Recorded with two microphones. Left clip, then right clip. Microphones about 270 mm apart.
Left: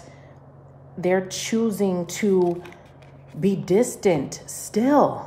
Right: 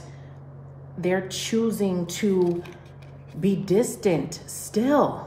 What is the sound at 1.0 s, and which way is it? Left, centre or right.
A woman's voice, left.